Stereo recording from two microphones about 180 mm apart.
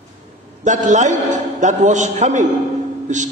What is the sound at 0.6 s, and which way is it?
A man's voice, 45° right (ahead or behind).